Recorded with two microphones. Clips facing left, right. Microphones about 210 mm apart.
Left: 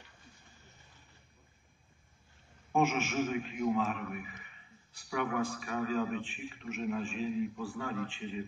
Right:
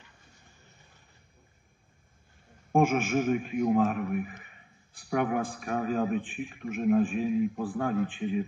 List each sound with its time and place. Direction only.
2.7 s a man's voice: 50° right (ahead or behind)